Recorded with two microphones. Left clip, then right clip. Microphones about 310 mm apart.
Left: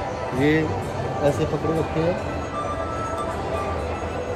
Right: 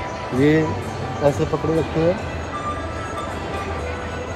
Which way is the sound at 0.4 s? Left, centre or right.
Centre.